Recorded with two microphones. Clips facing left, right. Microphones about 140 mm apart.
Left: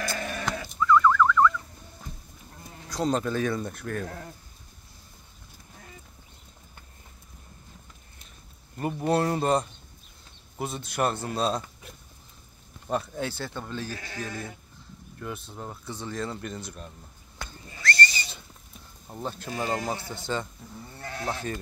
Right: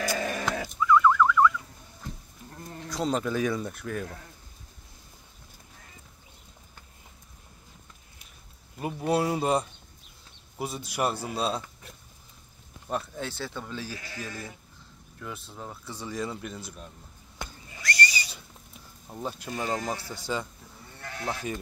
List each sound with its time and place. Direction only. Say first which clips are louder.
0.0 s goat: right 2 dB; 10° right (ahead or behind)
0.7 s fowl: left 1 dB; 10° right (ahead or behind)
2.9 s speech: left 2 dB; centre (ahead or behind)
8.7 s a man's voice: left 1 dB; 5° right (ahead or behind)
15.1 s a man's voice: left 3 dB; centre (ahead or behind)
15.9 s a man's voice: even; 10° right (ahead or behind)
17.4 s neigh: left 1 dB; 15° right (ahead or behind)
19.2 s speech: left 1 dB; 5° right (ahead or behind)
19.5 s a man's voice: left 2 dB; 5° left (ahead or behind)
21.0 s sheep: left 1 dB; 25° left (ahead or behind)